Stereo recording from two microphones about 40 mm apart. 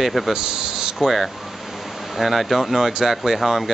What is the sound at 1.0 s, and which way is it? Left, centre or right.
Speech, centre.